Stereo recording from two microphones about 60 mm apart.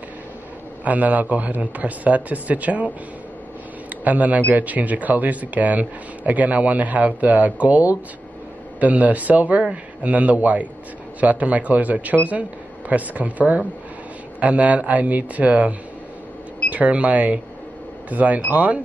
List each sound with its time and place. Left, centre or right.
0.8 s speech: right
4.0 s speech: right
16.7 s speech: right